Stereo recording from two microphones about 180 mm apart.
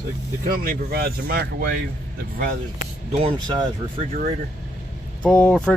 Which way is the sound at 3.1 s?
30° right (ahead or behind).